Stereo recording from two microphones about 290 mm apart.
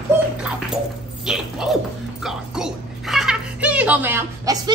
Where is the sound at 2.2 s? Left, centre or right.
Centre.